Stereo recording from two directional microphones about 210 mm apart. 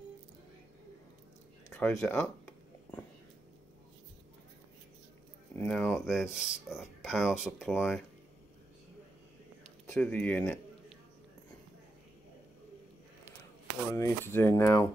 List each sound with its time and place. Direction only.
1.7 s speech: 5° left (ahead or behind)
5.6 s speech: 5° left (ahead or behind)
6.7 s a sound: centre (ahead or behind)
7.4 s speech: centre (ahead or behind)
9.8 s speech: 5° left (ahead or behind)
13.8 s speech: 10° left (ahead or behind)